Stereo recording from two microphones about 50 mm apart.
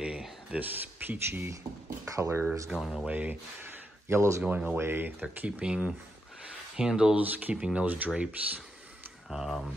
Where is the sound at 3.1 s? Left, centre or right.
Right.